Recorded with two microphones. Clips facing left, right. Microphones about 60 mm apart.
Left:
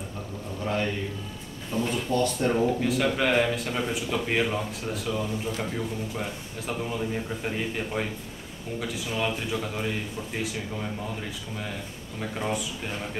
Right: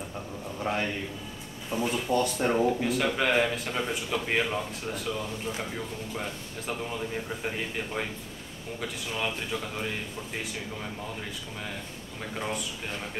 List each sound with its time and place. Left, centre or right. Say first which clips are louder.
0.7 s a man's voice: left 2 dB; right; by 10.9 s centre
12.2 s speech: left 4 dB; centre